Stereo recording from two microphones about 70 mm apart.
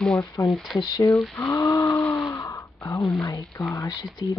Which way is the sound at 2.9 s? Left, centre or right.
Left.